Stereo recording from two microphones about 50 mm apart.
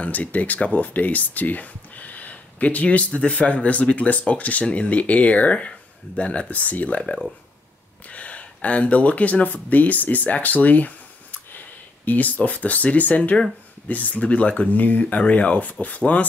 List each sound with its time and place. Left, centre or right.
0.0 s speech: left
8.1 s speech: left
12.0 s speech: left